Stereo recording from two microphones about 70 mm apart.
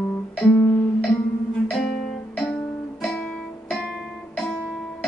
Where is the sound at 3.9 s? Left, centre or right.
Centre.